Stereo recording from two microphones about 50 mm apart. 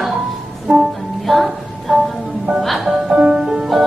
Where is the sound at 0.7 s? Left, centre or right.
Centre.